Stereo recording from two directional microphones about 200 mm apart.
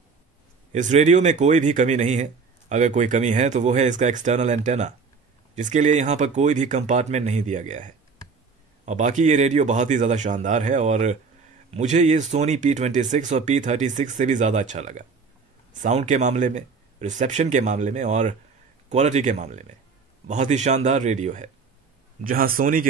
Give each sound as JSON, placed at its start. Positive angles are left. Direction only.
{"t": 0.7, "sound": "speech", "side_deg": -35}